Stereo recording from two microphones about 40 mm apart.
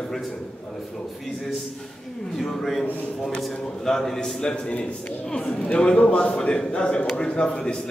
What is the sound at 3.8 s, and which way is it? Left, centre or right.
Speech, centre.